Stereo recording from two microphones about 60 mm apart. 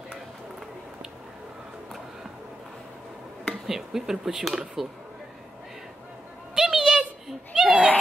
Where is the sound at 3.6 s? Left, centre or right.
Centre.